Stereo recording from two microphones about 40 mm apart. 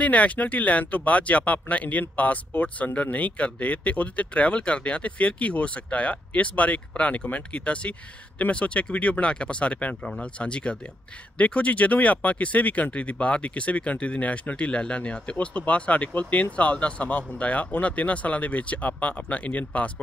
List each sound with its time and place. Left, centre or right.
0.0 s speech: left